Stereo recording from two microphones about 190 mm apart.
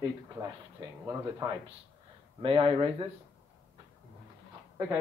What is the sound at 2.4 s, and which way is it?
Speech, 30° right (ahead or behind).